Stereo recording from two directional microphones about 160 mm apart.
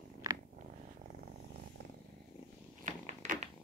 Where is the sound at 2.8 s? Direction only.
50° right (ahead or behind).